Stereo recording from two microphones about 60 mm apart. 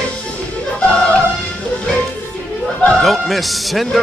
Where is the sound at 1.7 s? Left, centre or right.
Centre.